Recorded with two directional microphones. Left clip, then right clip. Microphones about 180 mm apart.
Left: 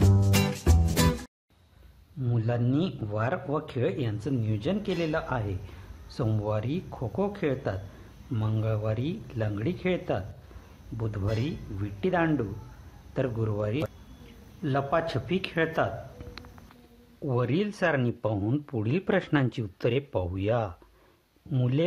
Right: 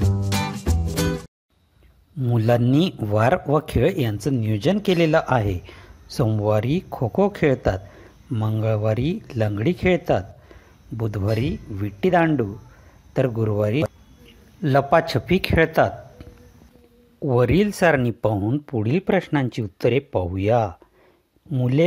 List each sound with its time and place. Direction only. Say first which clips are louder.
0.0 s music: even; centre (ahead or behind)
2.2 s a man's voice: right 11 dB; 50° right (ahead or behind); by 15.9 s 35° right (ahead or behind)
17.3 s speech: right 10 dB; 40° right (ahead or behind)
18.4 s speech: right 6 dB; 25° right (ahead or behind)